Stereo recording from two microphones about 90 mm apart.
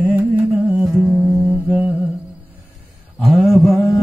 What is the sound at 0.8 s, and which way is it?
Music, 15° right (ahead or behind).